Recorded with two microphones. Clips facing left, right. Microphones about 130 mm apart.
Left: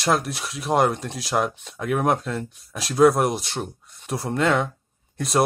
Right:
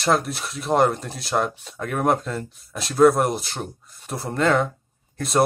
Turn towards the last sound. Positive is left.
turn(degrees=0)  # may be behind; listen again after turning